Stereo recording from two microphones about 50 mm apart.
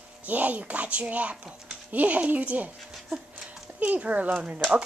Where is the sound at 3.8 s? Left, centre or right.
Right.